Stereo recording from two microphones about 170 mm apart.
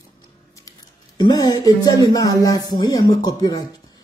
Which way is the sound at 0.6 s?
20° left (ahead or behind).